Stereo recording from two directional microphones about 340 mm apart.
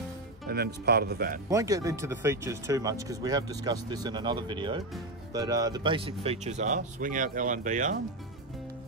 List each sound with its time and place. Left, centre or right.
0.5 s speech: right
1.5 s speech: centre